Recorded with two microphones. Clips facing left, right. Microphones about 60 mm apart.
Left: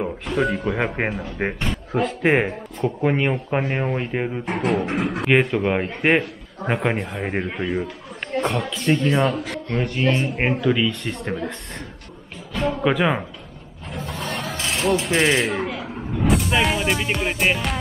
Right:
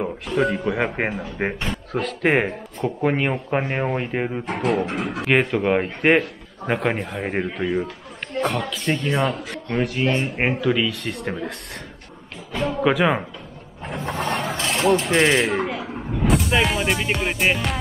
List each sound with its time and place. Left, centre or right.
0.0 s speech: centre
1.9 s speech: centre
2.2 s speech: centre
12.5 s speech: centre
14.0 s vehicle: right
14.3 s a sound: centre
16.3 s music: centre